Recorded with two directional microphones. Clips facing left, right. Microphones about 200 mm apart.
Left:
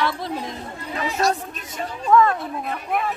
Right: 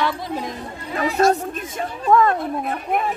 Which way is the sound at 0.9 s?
50° right (ahead or behind).